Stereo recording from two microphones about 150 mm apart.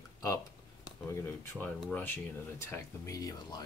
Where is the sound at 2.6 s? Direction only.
20° left (ahead or behind).